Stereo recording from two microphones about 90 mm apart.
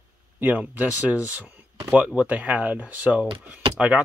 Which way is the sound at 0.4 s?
20° right (ahead or behind).